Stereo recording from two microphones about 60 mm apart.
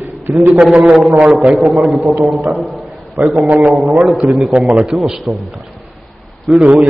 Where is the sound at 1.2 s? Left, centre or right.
Centre.